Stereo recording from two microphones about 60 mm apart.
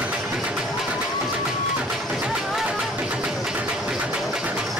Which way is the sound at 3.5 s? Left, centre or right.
Right.